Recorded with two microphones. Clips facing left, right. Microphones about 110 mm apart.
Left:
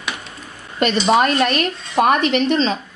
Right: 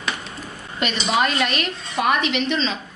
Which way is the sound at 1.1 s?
45° left (ahead or behind).